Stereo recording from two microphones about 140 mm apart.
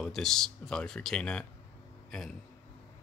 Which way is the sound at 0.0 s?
Centre (ahead or behind).